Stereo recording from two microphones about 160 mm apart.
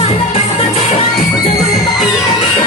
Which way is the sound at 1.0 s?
25° left (ahead or behind).